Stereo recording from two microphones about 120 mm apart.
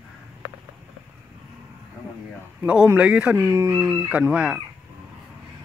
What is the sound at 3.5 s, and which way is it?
Chicken, 25° right (ahead or behind).